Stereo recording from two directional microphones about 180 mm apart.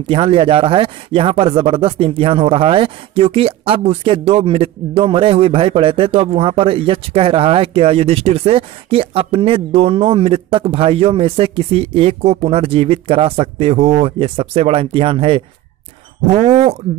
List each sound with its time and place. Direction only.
0.1 s speech: 30° right (ahead or behind)